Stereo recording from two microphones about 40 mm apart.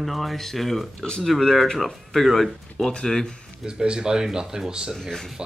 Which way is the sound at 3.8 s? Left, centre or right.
Right.